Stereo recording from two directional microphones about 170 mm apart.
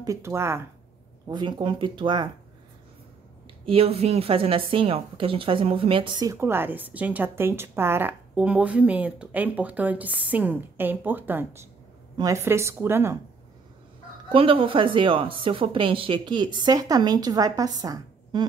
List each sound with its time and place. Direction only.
0.0 s a woman's voice: 15° right (ahead or behind)
1.2 s a woman's voice: 25° right (ahead or behind)
3.6 s a woman's voice: 35° right (ahead or behind); by 13.2 s 15° right (ahead or behind)
14.3 s a woman's voice: 30° right (ahead or behind)